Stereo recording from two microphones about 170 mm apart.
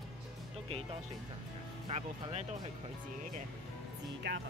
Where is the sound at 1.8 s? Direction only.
40° right (ahead or behind).